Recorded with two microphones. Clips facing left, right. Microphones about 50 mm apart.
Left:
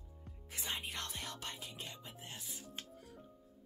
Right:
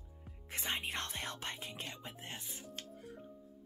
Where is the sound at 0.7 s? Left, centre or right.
Right.